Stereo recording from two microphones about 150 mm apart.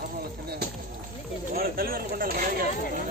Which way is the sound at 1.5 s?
80° right.